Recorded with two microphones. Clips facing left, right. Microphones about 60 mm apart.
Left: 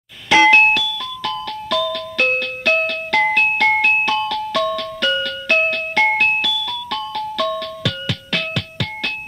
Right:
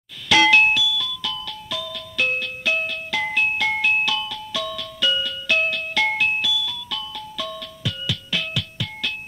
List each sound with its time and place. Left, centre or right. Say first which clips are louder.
0.3 s music: left 4 dB; left
0.6 s music: left 3 dB; left
1.8 s music: left 6 dB; left
4.3 s music: left 9 dB; left